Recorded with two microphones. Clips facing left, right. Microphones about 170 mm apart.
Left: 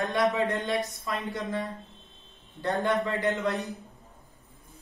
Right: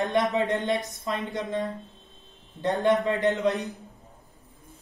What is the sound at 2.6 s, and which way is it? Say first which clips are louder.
Speech: right 4 dB; 20° right (ahead or behind).